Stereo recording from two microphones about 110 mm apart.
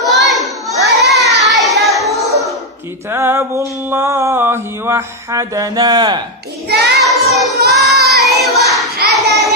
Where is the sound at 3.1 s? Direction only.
20° right (ahead or behind); by 6.2 s 40° right (ahead or behind).